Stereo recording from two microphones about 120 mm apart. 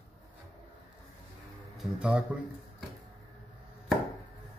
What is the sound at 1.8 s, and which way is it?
Speech, 10° right (ahead or behind).